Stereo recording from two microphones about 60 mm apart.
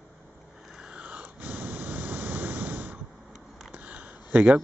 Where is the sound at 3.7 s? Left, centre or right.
Right.